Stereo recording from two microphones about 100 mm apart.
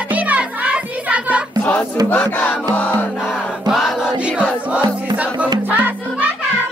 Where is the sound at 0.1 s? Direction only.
15° right (ahead or behind).